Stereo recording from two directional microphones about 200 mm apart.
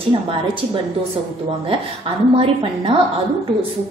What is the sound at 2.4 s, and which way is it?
Speech, 30° right (ahead or behind).